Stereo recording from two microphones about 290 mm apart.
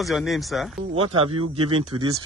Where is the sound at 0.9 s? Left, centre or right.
Centre.